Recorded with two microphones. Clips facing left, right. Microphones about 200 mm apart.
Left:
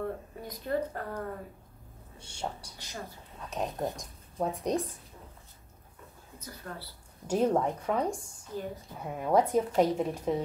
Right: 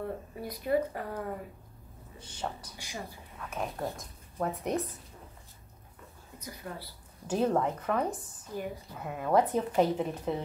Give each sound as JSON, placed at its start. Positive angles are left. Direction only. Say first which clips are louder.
{"t": 0.4, "sound": "speech", "louder": "right 3 dB", "side_deg": -10}
{"t": 2.3, "sound": "a woman's voice", "louder": "even", "side_deg": 10}
{"t": 2.8, "sound": "speech", "louder": "right 1 dB", "side_deg": -10}
{"t": 3.3, "sound": "speech", "louder": "left 2 dB", "side_deg": 20}
{"t": 6.4, "sound": "speech", "louder": "right 1 dB", "side_deg": -15}
{"t": 7.2, "sound": "a woman's voice", "louder": "left 1 dB", "side_deg": 10}
{"t": 8.5, "sound": "speech", "louder": "even", "side_deg": -10}
{"t": 9.0, "sound": "a woman's voice", "louder": "left 1 dB", "side_deg": 15}